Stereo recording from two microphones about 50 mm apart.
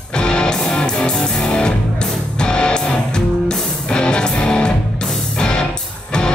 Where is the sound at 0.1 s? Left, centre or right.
Centre.